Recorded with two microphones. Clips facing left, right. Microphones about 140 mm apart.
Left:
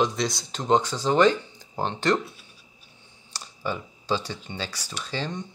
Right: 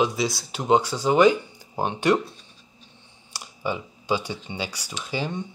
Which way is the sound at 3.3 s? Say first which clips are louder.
Right 2 dB; 10° right (ahead or behind).